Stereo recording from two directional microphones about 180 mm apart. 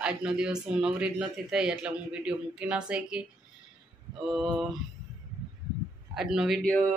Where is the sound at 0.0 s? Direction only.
5° right (ahead or behind).